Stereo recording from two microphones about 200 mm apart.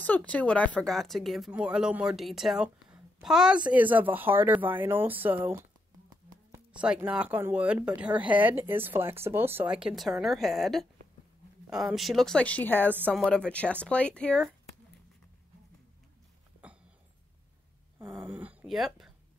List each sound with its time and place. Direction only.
0.0 s speech: 5° left (ahead or behind); by 5.6 s 10° right (ahead or behind)
6.7 s speech: 5° right (ahead or behind)
11.9 s speech: centre (ahead or behind)
12.9 s speech: 10° right (ahead or behind)
13.5 s speech: 5° left (ahead or behind)
16.6 s a sound: 5° right (ahead or behind)
17.9 s a sound: 10° right (ahead or behind)